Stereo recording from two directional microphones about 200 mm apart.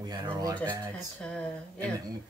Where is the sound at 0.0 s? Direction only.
20° right (ahead or behind).